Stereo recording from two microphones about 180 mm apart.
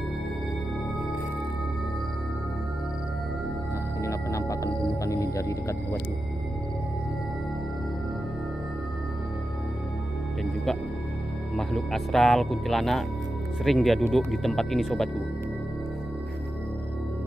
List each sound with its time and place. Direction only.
4.0 s music: 15° left (ahead or behind)
10.4 s music: centre (ahead or behind)
11.5 s speech: centre (ahead or behind)